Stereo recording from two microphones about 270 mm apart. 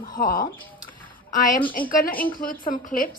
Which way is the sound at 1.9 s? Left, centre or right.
Left.